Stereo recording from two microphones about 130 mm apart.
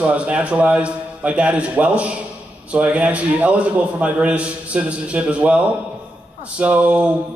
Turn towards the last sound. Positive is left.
turn(degrees=-10)  # may be behind; listen again after turning